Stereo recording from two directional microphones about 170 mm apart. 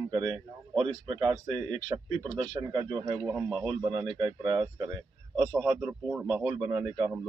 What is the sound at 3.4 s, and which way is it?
Speech, 5° left (ahead or behind).